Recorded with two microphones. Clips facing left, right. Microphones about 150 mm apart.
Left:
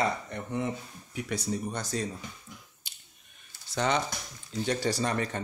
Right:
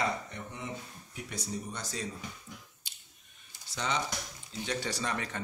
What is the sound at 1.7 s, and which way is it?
Speech, 50° left (ahead or behind).